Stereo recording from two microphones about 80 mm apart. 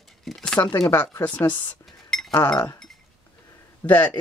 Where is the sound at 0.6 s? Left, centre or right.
Left.